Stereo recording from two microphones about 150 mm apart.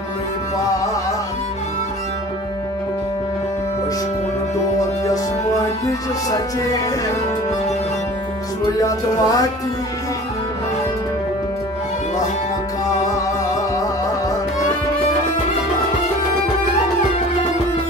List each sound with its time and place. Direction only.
5.9 s speech: 25° left (ahead or behind)
8.7 s speech: 25° left (ahead or behind)